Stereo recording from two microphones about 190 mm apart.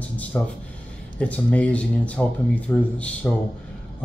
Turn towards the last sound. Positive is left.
turn(degrees=5)  # may be behind; listen again after turning